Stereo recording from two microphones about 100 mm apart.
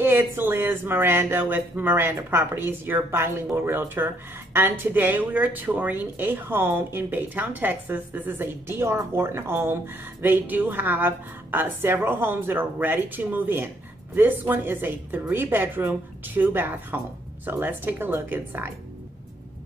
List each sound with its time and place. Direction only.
0.0 s speech: 20° right (ahead or behind)